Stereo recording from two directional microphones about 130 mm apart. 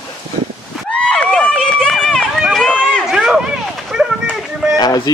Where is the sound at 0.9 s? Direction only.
5° left (ahead or behind).